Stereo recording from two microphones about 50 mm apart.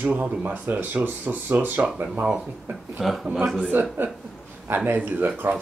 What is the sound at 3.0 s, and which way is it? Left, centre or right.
Speech, centre.